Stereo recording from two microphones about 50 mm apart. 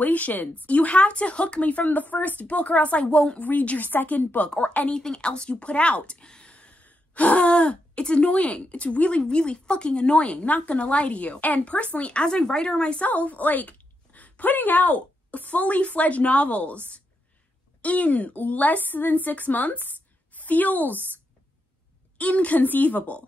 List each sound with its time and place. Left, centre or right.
0.0 s a woman's voice: left
4.5 s speech: left
13.0 s a woman's voice: left
22.1 s a woman's voice: left